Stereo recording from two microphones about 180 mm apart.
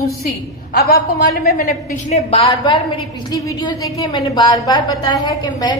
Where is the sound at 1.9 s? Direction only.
35° left (ahead or behind).